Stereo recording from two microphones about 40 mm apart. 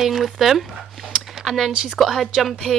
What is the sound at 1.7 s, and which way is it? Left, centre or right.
Speech, centre.